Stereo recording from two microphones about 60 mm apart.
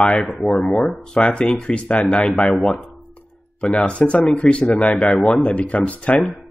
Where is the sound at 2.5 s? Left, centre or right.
Centre.